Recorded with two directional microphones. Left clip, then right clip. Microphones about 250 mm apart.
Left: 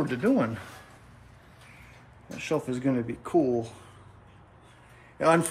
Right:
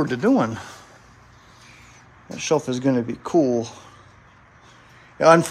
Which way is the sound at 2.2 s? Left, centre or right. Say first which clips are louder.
Right 8 dB; centre.